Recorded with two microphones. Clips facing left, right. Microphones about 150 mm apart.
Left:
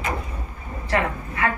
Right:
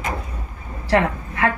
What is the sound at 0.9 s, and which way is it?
Speech, 75° right (ahead or behind).